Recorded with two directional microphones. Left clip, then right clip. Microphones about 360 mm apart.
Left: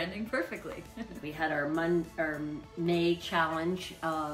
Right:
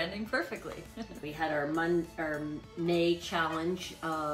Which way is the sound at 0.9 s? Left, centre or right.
Centre.